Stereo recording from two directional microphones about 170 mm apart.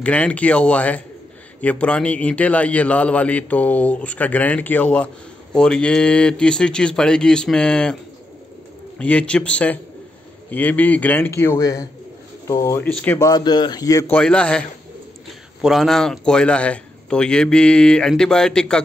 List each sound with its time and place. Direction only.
0.0 s a man's voice: 5° left (ahead or behind)
13.3 s a man's voice: 25° left (ahead or behind)
14.1 s a man's voice: 5° left (ahead or behind)